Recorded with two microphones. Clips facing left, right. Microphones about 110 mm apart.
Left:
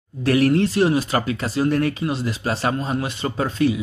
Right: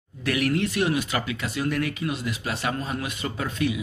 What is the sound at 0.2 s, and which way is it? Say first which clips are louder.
Speech: left 7 dB; 35° left (ahead or behind).